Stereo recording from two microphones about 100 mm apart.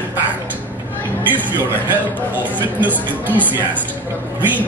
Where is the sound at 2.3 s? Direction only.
15° right (ahead or behind).